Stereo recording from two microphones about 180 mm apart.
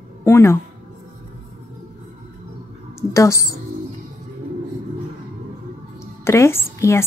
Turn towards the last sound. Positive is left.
turn(degrees=15)  # may be behind; listen again after turning